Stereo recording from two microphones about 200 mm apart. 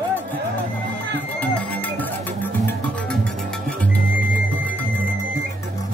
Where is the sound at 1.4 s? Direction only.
10° left (ahead or behind).